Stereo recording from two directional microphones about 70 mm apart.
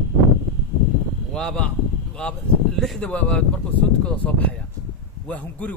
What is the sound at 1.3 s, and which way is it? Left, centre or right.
Speech, centre.